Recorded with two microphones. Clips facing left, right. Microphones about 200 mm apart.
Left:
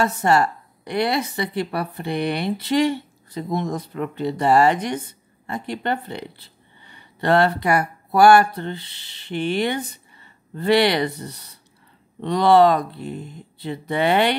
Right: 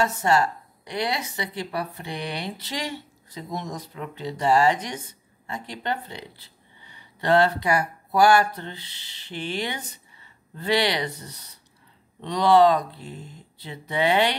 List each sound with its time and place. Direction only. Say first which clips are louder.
0.0 s a woman's voice: left 3 dB; 60° left (ahead or behind)